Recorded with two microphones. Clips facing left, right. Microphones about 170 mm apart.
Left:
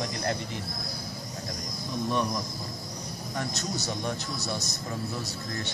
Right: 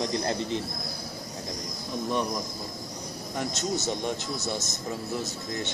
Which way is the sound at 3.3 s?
20° right (ahead or behind).